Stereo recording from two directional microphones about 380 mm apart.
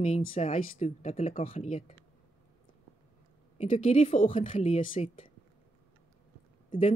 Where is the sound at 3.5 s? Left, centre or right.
Centre.